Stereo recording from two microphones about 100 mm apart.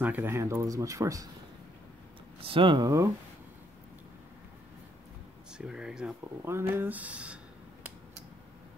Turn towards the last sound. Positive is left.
turn(degrees=-10)  # may be behind; listen again after turning